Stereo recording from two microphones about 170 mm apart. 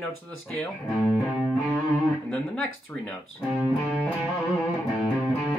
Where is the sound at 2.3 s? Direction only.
5° left (ahead or behind).